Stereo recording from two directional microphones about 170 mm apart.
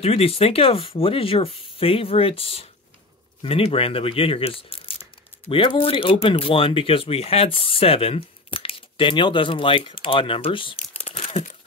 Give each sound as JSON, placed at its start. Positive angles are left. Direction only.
{"t": 0.0, "sound": "speech", "side_deg": 35}